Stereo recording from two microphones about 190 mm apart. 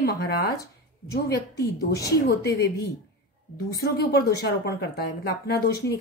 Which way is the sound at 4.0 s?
55° left (ahead or behind).